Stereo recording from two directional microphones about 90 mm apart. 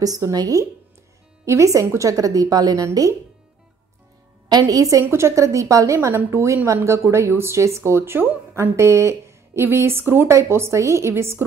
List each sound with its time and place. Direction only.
0.0 s a woman's voice: 40° right (ahead or behind)
4.5 s a woman's voice: 45° right (ahead or behind); by 8.7 s 20° right (ahead or behind)
8.7 s speech: 30° right (ahead or behind)